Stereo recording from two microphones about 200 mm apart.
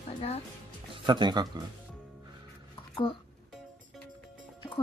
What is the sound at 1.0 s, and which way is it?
Speech, 25° right (ahead or behind).